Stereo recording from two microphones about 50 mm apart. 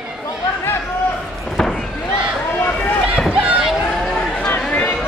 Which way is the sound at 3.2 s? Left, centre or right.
Centre.